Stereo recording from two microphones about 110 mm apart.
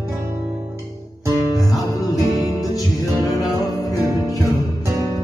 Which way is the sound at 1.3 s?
35° left (ahead or behind).